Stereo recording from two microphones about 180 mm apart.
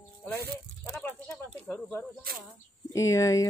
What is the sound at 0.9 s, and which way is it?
Speech, 10° left (ahead or behind).